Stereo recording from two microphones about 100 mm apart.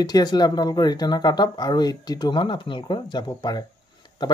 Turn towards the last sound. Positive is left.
turn(degrees=45)  # may be behind; listen again after turning